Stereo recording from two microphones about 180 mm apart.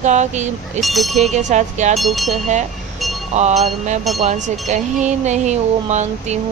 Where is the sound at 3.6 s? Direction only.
40° right (ahead or behind).